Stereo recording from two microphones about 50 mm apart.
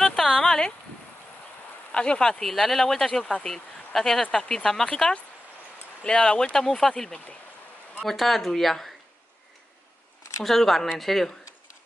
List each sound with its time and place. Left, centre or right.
0.0 s a sound: centre
1.9 s speech: centre
10.4 s speech: centre